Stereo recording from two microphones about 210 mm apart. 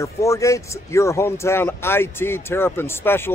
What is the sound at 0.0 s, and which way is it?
Speech, 15° left (ahead or behind).